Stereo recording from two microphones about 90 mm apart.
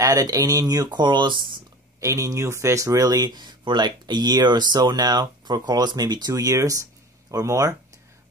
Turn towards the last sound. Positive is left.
turn(degrees=-40)  # may be behind; listen again after turning